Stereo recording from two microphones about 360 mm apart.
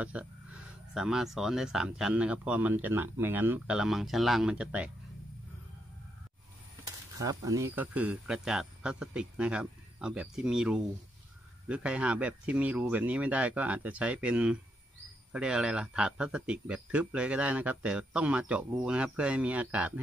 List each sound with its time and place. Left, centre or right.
0.0 s speech: centre
7.2 s speech: centre